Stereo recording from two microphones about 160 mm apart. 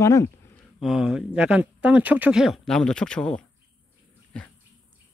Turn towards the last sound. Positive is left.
turn(degrees=5)  # may be behind; listen again after turning